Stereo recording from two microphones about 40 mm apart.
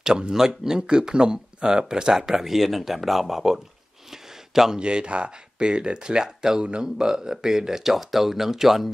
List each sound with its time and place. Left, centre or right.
0.0 s speech: centre
4.1 s a sound: centre
4.7 s speech: right; by 8.9 s centre